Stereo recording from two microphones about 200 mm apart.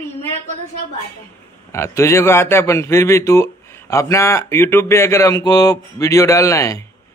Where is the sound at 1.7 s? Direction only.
15° left (ahead or behind).